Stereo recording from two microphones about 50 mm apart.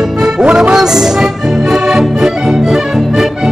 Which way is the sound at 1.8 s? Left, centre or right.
Centre.